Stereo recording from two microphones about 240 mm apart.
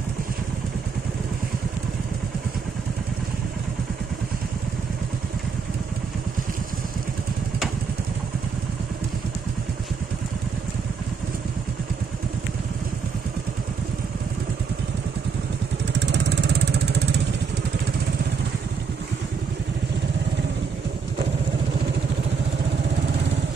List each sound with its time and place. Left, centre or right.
16.0 s vehicle: right